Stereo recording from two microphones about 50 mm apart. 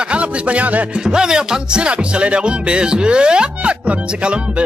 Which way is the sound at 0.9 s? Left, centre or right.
Centre.